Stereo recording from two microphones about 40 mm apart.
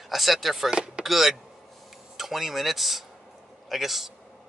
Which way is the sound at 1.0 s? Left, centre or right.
Centre.